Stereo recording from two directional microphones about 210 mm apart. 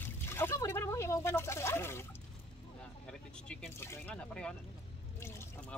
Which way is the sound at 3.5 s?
10° left (ahead or behind).